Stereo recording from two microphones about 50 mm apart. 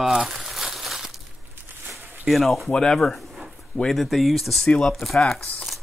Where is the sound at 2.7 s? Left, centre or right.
Centre.